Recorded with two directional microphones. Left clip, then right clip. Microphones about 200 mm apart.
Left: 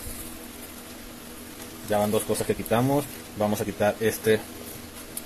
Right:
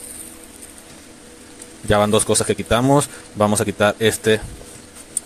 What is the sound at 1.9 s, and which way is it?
Speech, 40° right (ahead or behind).